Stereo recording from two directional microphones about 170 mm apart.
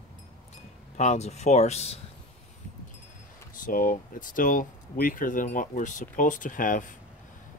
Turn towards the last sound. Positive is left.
turn(degrees=50)  # may be behind; listen again after turning